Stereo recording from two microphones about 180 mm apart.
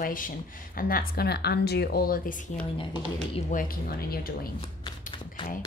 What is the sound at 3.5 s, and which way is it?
A woman's voice, 50° left (ahead or behind).